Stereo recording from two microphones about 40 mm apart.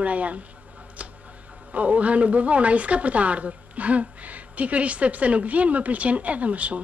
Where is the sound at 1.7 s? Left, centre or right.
Right.